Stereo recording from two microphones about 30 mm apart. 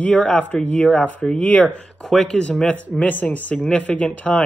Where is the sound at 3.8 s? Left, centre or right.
Left.